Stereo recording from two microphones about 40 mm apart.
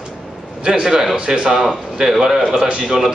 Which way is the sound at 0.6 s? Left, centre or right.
Centre.